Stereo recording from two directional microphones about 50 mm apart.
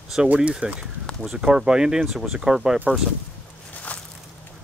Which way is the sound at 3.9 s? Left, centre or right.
Left.